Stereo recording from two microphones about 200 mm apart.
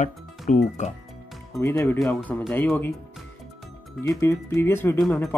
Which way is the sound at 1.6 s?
10° left (ahead or behind).